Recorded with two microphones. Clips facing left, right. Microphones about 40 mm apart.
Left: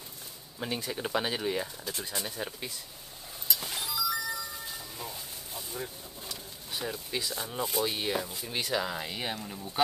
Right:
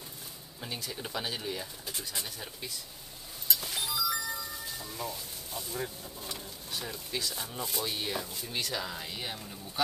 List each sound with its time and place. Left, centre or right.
0.6 s speech: left
3.6 s music: centre
4.6 s a sound: centre
6.7 s speech: centre